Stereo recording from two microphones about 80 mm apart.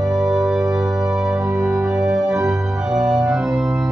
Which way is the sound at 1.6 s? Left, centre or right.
Centre.